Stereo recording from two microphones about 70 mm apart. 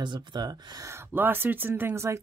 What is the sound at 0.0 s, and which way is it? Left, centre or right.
Speech, right.